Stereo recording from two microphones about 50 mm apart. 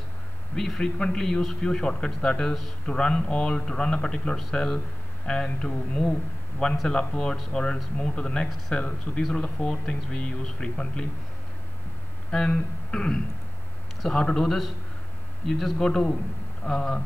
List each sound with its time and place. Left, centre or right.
0.6 s a man's voice: centre
12.3 s a man's voice: centre